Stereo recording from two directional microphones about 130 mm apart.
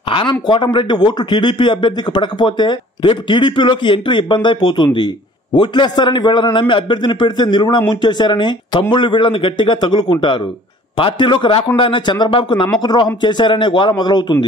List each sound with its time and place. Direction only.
0.1 s a man's voice: 40° left (ahead or behind)